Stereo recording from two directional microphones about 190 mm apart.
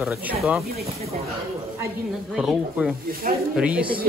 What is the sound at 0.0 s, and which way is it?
Speech, 5° right (ahead or behind).